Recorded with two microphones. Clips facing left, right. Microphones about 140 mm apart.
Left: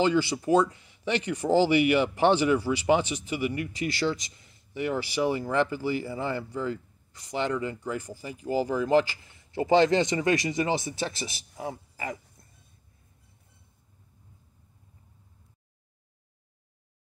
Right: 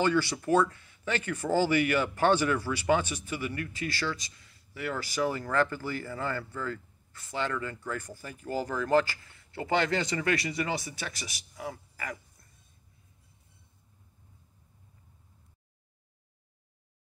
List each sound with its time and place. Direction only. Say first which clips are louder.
0.0 s speech: left 3 dB; 15° left (ahead or behind)